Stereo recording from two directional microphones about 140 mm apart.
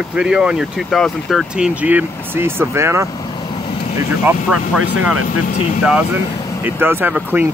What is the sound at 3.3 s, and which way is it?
Vehicle, 35° left (ahead or behind).